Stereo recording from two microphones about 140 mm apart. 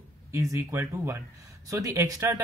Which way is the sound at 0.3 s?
20° right (ahead or behind).